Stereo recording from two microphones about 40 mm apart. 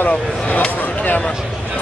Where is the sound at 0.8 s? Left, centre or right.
Left.